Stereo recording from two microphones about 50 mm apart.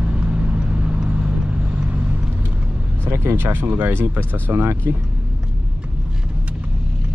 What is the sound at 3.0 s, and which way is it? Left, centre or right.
Vehicle, right.